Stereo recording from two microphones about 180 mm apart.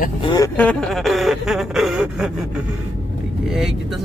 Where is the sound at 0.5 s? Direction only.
5° left (ahead or behind).